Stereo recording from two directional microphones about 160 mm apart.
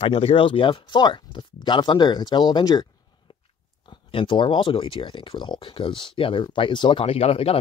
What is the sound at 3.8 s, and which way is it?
Speech, 30° left (ahead or behind).